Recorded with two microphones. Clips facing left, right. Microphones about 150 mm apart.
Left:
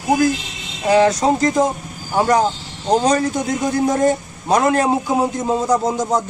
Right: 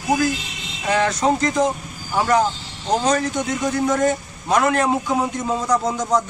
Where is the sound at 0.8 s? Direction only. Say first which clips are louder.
Left 5 dB; 35° left (ahead or behind).